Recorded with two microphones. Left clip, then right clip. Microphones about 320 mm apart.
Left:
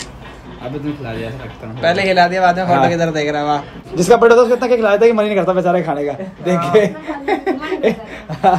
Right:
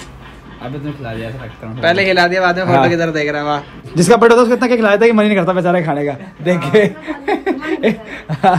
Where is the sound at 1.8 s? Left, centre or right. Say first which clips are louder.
Right 1 dB; centre.